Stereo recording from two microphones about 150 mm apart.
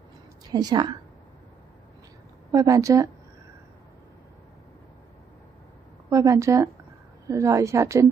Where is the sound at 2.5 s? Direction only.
25° right (ahead or behind).